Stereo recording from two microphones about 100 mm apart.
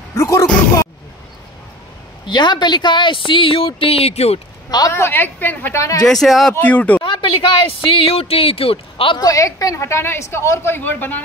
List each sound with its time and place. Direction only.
0.1 s speech: 30° left (ahead or behind)
2.2 s a woman's voice: 50° left (ahead or behind); by 4.4 s 90° left
4.6 s speech: 40° left (ahead or behind)
4.9 s a woman's voice: 25° left (ahead or behind)
5.8 s speech: 35° left (ahead or behind)
6.0 s speech: centre (ahead or behind)
6.6 s speech: 15° left (ahead or behind)
7.0 s a sound: 55° left (ahead or behind)
8.1 s speech: 75° left (ahead or behind)
9.2 s a woman's voice: 35° left (ahead or behind); by 11.2 s 20° left (ahead or behind)